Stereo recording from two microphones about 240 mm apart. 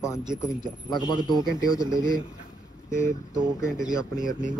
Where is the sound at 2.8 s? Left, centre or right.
Centre.